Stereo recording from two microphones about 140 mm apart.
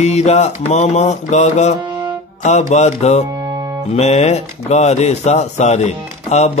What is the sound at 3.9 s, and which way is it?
Speech, 50° left (ahead or behind).